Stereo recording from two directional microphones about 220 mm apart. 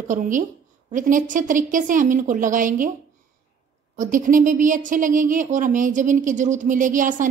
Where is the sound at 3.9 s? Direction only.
35° right (ahead or behind).